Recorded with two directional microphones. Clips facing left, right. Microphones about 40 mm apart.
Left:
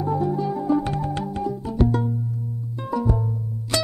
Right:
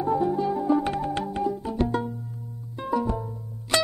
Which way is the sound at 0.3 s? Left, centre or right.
Centre.